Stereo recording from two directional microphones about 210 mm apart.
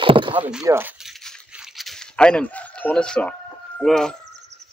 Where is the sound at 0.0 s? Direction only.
25° right (ahead or behind).